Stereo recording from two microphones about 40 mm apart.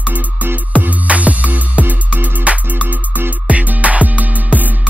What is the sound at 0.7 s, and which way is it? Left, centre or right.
Music, right.